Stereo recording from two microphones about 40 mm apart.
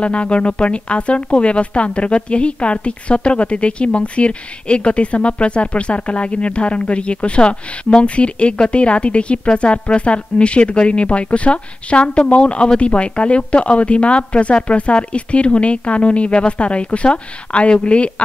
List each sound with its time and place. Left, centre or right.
0.0 s speech: left